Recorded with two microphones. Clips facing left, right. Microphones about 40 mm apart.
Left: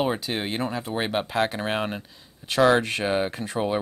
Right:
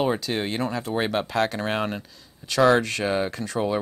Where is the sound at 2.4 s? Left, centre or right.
Left.